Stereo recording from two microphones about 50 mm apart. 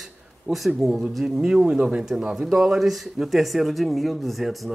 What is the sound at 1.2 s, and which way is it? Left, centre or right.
Speech, centre.